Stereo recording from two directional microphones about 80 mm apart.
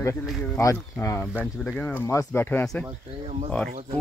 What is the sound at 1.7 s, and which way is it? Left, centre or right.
Speech, centre.